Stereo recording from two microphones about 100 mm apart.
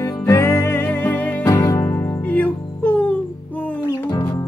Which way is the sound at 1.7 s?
30° left (ahead or behind).